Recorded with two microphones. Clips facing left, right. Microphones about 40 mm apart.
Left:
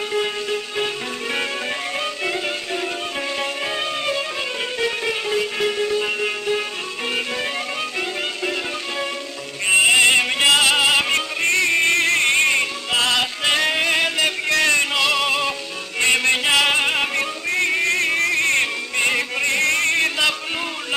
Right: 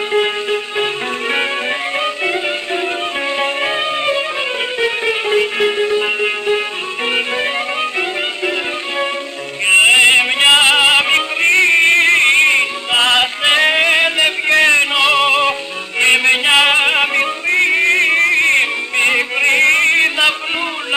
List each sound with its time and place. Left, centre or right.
0.1 s music: right
2.0 s music: right
8.5 s music: right
9.7 s opera: right
16.0 s music: right